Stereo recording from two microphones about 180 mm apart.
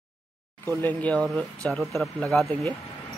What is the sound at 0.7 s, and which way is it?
Speech, 10° left (ahead or behind).